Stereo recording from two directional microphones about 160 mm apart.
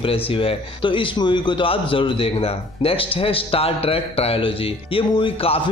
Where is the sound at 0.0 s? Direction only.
35° left (ahead or behind).